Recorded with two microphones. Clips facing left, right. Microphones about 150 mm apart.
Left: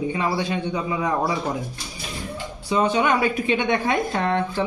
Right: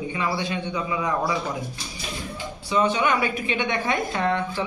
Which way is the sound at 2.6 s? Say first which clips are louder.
Left 2 dB; 40° left (ahead or behind).